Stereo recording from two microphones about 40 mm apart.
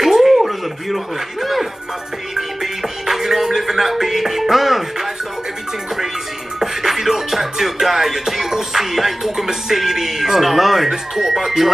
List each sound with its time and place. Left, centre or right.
0.0 s music: centre
6.6 s music: centre